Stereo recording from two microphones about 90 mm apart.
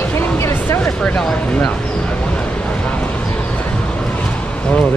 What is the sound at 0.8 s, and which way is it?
Speech, 10° left (ahead or behind).